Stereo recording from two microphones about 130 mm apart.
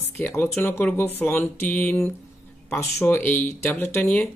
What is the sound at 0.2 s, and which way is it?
Speech, 15° left (ahead or behind).